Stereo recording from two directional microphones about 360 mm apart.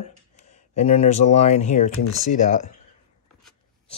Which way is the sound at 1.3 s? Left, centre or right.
Centre.